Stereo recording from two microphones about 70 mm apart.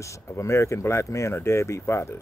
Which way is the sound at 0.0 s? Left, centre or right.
Left.